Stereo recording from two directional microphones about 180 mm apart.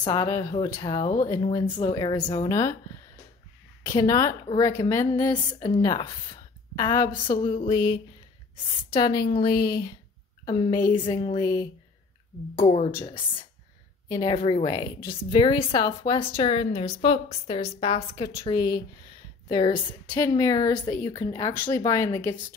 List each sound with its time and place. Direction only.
0.0 s a woman's voice: 20° left (ahead or behind)
3.9 s a woman's voice: 20° left (ahead or behind)
14.0 s a woman's voice: 20° left (ahead or behind)
20.2 s a woman's voice: 20° left (ahead or behind)